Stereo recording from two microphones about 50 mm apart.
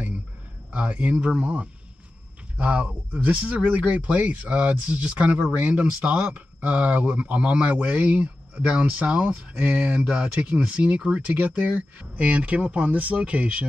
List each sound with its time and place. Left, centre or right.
0.7 s speech: right